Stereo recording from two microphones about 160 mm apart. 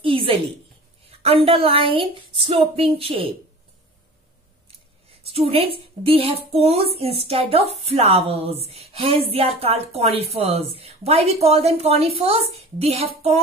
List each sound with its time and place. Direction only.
0.0 s a sound: 35° right (ahead or behind)
1.2 s a woman's voice: 35° right (ahead or behind)
5.2 s a woman's voice: 35° right (ahead or behind)